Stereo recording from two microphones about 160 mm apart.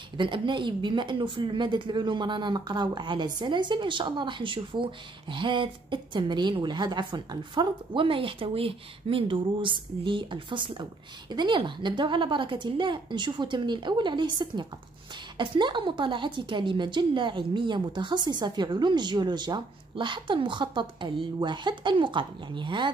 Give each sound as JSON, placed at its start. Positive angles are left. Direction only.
{"t": 0.2, "sound": "speech", "side_deg": -30}